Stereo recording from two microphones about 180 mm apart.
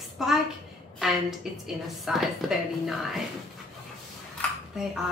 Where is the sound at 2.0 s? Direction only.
Centre (ahead or behind).